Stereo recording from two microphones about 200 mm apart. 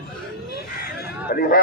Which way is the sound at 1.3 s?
50° left (ahead or behind).